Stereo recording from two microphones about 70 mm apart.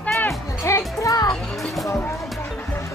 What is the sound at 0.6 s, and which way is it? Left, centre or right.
Music, left.